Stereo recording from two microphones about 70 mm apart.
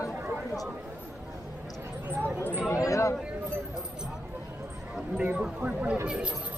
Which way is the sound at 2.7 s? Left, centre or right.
Left.